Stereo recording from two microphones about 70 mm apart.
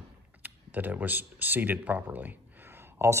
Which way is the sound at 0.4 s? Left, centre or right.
Right.